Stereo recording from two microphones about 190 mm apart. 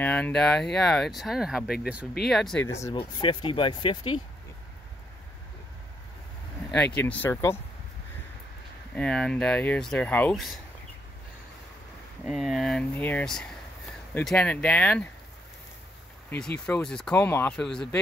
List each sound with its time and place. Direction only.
0.0 s speech: 10° left (ahead or behind)
2.6 s speech: 15° left (ahead or behind)
2.9 s speech: 25° left (ahead or behind)
6.7 s speech: 5° left (ahead or behind)
8.9 s speech: 5° left (ahead or behind)
12.3 s speech: centre (ahead or behind)
16.6 s speech: 5° left (ahead or behind)